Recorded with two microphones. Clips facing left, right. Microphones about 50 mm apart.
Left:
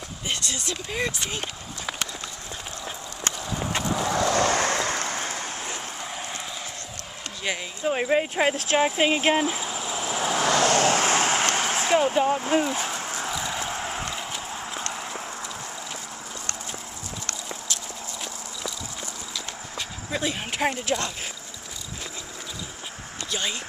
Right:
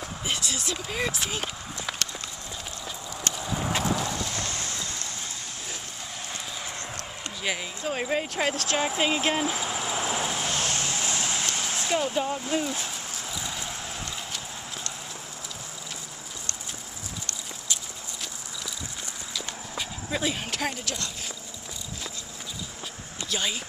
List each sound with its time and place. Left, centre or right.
0.3 s speech: centre
3.3 s horse: centre
4.1 s vehicle: left
7.5 s speech: centre
7.8 s speech: centre
9.7 s vehicle: centre
10.6 s vehicle: left
11.9 s speech: left
13.3 s a sound: left
14.1 s horse: centre
19.3 s horse: centre
20.5 s speech: left